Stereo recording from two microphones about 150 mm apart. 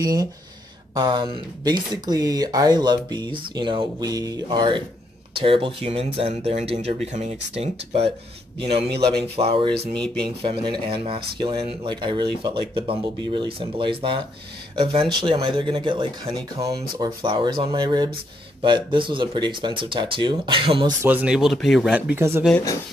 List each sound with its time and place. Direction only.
0.0 s speech: 25° right (ahead or behind)
9.9 s speech: 5° left (ahead or behind)
10.4 s speech: 35° right (ahead or behind)
21.0 s speech: 10° right (ahead or behind)
22.1 s speech: 15° right (ahead or behind)